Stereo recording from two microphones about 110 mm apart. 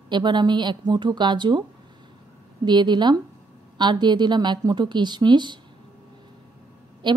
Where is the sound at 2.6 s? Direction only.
40° right (ahead or behind).